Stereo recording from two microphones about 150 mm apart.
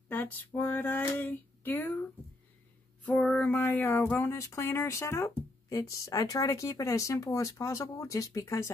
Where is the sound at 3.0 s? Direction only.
10° left (ahead or behind).